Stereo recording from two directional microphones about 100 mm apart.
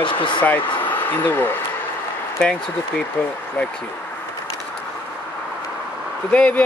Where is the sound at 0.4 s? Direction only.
15° left (ahead or behind).